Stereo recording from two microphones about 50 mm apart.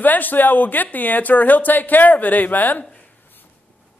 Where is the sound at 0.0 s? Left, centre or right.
Left.